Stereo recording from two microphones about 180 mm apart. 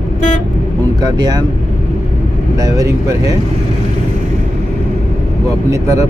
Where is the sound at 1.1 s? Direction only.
20° right (ahead or behind).